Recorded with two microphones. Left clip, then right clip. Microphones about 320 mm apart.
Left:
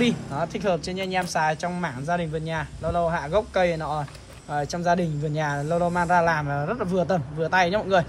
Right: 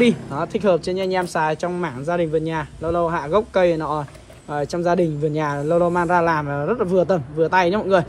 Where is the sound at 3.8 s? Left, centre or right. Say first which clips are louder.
Right 4 dB; right.